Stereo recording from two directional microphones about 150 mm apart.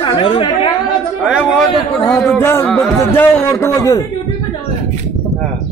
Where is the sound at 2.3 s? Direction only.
15° left (ahead or behind).